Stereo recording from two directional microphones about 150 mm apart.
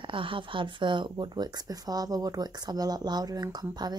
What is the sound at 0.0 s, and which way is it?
Speech, 35° right (ahead or behind).